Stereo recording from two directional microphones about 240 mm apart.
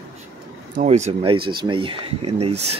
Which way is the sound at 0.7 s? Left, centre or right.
Right.